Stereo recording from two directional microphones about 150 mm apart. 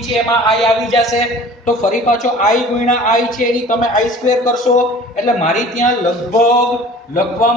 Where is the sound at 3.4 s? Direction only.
60° left (ahead or behind).